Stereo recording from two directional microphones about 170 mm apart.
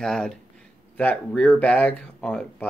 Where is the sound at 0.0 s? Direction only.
5° left (ahead or behind).